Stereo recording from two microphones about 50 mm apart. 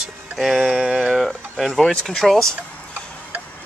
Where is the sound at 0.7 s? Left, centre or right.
Centre.